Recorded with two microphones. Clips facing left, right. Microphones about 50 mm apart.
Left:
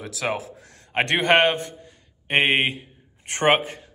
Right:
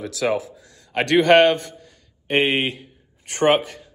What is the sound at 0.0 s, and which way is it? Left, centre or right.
Speech, left.